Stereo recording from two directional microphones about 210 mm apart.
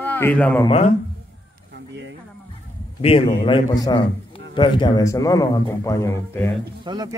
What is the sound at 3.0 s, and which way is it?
A man's voice, 30° left (ahead or behind).